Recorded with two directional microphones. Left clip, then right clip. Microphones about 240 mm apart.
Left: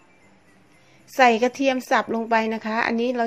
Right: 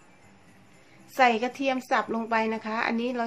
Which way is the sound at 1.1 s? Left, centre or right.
Left.